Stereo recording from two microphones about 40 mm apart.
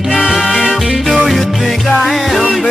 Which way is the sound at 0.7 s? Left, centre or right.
Centre.